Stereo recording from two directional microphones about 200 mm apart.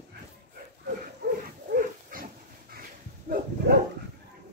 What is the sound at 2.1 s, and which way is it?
Dog, 40° right (ahead or behind).